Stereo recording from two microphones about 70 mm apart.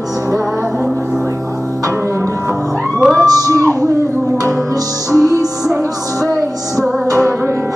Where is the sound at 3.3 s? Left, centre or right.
Right.